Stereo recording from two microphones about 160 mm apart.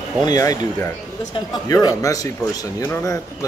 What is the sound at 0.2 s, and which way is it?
A man's voice, 25° left (ahead or behind).